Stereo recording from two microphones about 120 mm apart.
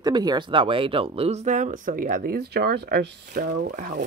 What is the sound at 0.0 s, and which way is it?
Speech, 35° right (ahead or behind).